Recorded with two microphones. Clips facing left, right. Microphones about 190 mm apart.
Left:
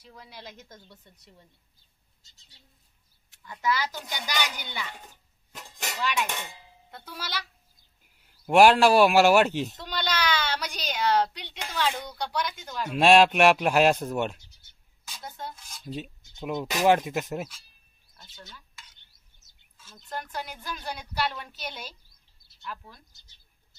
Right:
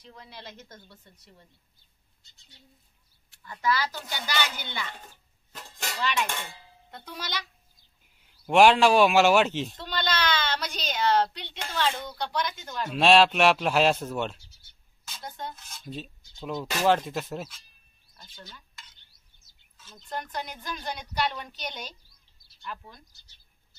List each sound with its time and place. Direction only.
0.0 s speech: 10° left (ahead or behind)
3.4 s speech: 20° left (ahead or behind)
5.9 s speech: 5° left (ahead or behind)
8.5 s speech: 10° left (ahead or behind)
18.1 s a sound: 5° left (ahead or behind)
19.8 s speech: 5° left (ahead or behind)